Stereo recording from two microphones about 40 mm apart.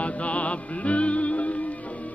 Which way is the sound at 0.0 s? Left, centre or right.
Left.